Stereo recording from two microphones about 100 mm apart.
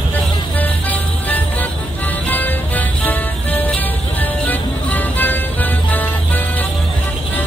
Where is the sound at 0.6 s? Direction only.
15° left (ahead or behind).